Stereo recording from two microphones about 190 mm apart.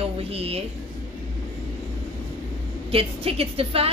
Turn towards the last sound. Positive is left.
turn(degrees=-30)  # may be behind; listen again after turning